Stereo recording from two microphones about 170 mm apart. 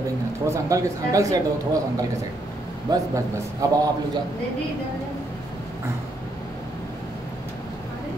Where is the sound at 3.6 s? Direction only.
20° right (ahead or behind).